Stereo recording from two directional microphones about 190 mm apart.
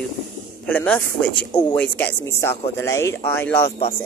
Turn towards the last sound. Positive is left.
turn(degrees=10)  # may be behind; listen again after turning